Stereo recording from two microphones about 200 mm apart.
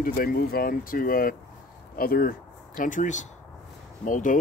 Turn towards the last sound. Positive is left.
turn(degrees=40)  # may be behind; listen again after turning